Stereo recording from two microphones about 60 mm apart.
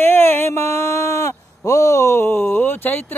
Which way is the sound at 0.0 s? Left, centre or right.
Left.